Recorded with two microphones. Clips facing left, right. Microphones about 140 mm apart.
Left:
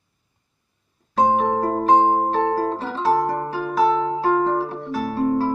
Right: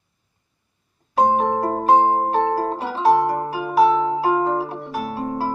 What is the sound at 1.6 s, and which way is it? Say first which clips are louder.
Music: right 1 dB; 15° right (ahead or behind).